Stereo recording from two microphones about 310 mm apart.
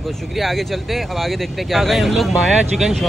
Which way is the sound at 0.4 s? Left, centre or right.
Centre.